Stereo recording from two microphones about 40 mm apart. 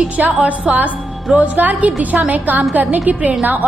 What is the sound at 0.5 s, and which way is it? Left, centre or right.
A woman's voice, right.